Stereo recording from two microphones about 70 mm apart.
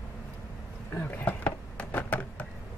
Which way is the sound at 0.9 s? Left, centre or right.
Left.